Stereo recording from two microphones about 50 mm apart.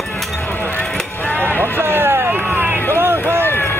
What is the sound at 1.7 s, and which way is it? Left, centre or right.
Run, right.